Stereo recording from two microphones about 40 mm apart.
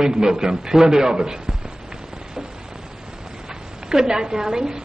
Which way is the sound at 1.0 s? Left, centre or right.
Centre.